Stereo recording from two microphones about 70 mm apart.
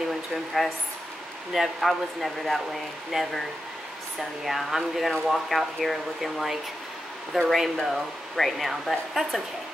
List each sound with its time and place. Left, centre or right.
0.0 s a sound: centre
1.5 s speech: centre
4.5 s speech: centre